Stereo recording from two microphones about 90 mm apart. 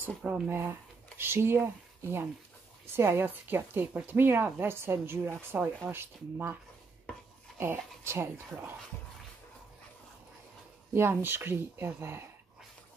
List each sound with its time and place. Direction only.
0.5 s a woman's voice: 25° right (ahead or behind)
11.0 s a woman's voice: 25° right (ahead or behind)